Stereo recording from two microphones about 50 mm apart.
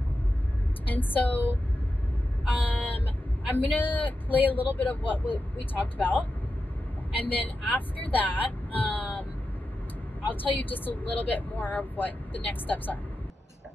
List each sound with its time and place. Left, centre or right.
0.8 s speech: left
2.6 s vehicle: left
3.4 s speech: left
7.2 s speech: left
10.3 s speech: left